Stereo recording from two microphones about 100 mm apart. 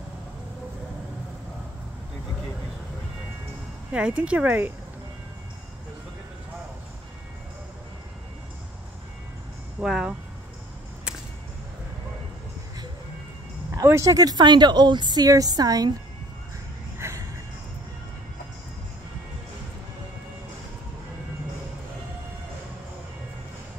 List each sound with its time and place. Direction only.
3.9 s speech: 10° right (ahead or behind)
9.8 s a sound: 10° right (ahead or behind)
13.7 s speech: 30° right (ahead or behind)
17.0 s music: 25° right (ahead or behind)